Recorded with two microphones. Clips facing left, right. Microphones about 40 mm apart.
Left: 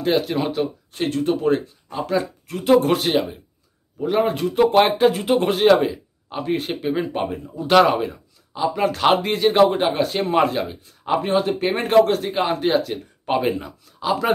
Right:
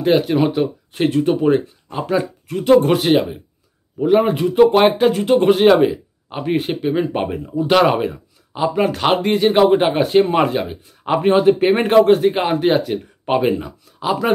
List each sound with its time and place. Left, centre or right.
0.0 s speech: centre
2.4 s speech: centre
5.7 s speech: centre
8.0 s a sound: right
8.6 s speech: centre
10.2 s speech: centre
11.2 s speech: right
13.4 s speech: centre